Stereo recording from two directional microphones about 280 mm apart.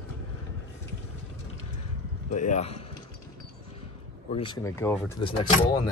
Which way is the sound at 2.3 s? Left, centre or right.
Left.